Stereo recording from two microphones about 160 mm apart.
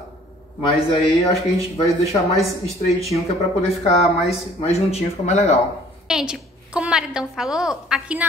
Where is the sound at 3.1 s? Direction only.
40° left (ahead or behind).